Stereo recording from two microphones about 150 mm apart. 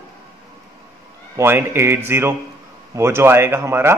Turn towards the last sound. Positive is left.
turn(degrees=-15)  # may be behind; listen again after turning